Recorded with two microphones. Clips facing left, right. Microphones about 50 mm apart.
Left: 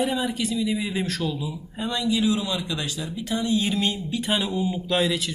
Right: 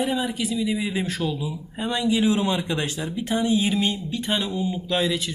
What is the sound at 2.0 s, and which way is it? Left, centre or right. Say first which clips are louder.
A man's voice: right 3 dB; right.